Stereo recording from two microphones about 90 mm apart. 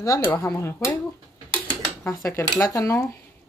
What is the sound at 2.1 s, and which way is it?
Speech, 35° left (ahead or behind).